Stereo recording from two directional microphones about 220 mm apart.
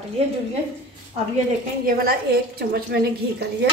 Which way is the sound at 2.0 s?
45° right (ahead or behind).